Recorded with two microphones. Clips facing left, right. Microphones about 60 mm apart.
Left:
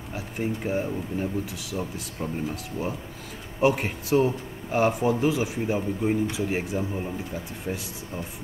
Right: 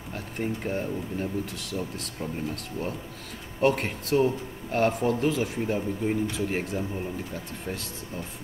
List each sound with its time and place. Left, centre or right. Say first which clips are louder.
0.1 s a man's voice: left 1 dB; centre